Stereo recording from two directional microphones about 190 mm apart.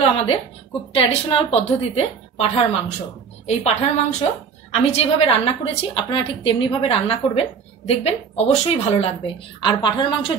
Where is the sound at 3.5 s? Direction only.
35° left (ahead or behind).